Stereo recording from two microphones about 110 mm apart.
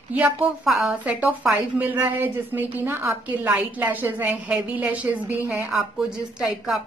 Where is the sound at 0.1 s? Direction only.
15° right (ahead or behind).